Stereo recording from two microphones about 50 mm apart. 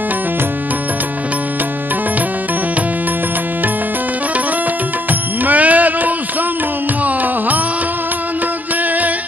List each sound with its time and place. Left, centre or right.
5.4 s music: right